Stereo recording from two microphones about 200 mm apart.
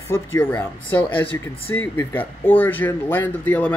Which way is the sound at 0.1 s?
10° left (ahead or behind).